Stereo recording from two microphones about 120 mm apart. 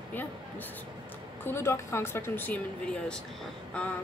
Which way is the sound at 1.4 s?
20° left (ahead or behind).